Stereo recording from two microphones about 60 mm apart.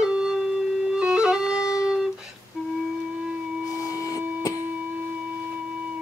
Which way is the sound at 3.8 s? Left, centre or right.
Left.